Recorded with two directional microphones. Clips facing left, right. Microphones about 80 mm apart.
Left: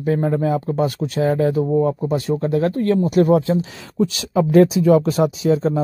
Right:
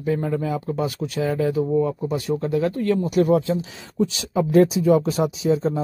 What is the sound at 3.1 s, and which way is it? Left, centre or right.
Speech, left.